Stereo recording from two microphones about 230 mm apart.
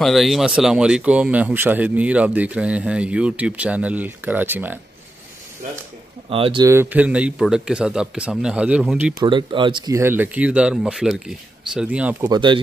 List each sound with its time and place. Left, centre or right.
0.0 s speech: centre
6.3 s speech: right; by 9.1 s centre
9.2 s speech: right
12.3 s speech: right